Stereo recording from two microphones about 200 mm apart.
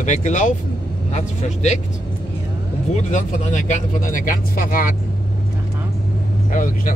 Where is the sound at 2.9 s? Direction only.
40° left (ahead or behind).